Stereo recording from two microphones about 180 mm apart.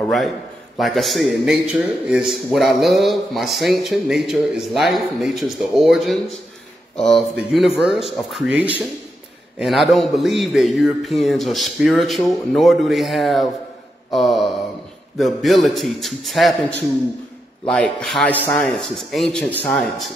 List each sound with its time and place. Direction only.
0.0 s a man's voice: centre (ahead or behind)
17.6 s a man's voice: 5° left (ahead or behind)